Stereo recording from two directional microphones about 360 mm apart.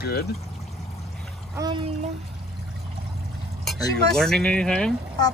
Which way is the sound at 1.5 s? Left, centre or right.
Centre.